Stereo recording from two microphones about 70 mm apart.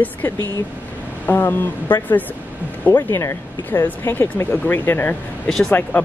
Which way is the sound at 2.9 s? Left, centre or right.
Left.